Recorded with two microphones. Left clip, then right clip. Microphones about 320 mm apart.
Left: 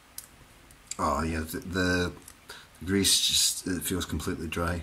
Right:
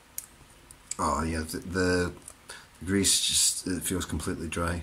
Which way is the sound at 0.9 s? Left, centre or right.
Centre.